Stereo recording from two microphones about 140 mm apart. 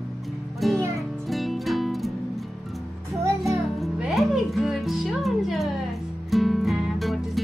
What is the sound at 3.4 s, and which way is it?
Music, centre (ahead or behind).